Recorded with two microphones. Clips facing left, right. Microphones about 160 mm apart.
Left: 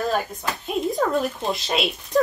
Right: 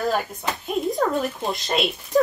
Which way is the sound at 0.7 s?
Centre (ahead or behind).